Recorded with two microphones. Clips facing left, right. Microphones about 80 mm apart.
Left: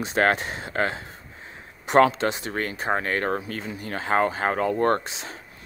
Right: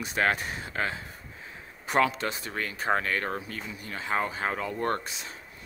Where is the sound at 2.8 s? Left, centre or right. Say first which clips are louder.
Even; left.